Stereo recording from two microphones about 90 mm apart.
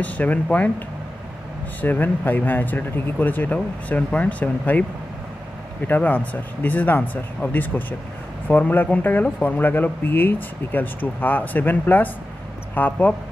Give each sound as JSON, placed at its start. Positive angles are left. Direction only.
{"t": 0.0, "sound": "speech", "side_deg": 15}
{"t": 1.8, "sound": "speech", "side_deg": 20}
{"t": 5.9, "sound": "speech", "side_deg": 20}